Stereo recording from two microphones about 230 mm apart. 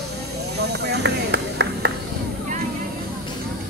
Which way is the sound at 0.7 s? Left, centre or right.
Right.